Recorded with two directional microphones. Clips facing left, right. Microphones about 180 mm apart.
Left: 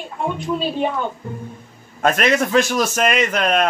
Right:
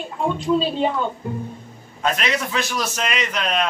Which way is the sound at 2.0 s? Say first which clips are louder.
Left 6 dB; 50° left (ahead or behind).